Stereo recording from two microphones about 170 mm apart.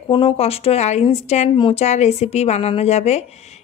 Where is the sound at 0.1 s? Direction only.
35° left (ahead or behind).